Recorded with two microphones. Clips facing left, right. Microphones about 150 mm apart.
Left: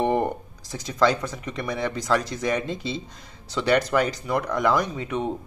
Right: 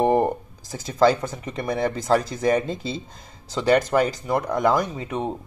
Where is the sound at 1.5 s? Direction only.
45° right (ahead or behind).